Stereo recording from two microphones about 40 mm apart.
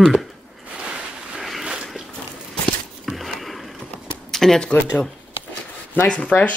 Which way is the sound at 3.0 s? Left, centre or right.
Centre.